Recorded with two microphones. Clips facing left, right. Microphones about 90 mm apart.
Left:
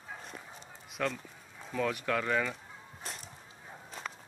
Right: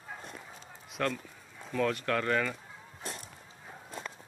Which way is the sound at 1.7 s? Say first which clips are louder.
Right 2 dB; 10° left (ahead or behind).